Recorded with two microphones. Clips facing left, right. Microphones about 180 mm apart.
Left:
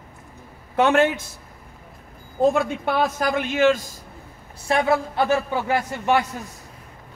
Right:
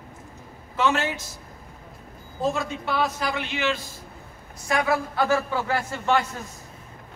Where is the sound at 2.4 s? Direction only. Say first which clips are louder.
Left 7 dB; 55° left (ahead or behind).